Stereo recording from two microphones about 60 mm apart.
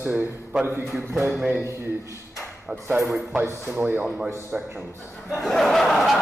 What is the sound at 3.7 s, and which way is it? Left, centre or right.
Speech, right.